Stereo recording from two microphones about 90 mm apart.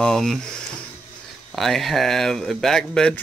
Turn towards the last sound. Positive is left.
turn(degrees=5)  # may be behind; listen again after turning